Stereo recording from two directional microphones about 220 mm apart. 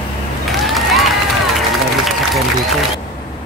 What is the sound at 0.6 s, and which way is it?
Run, centre (ahead or behind).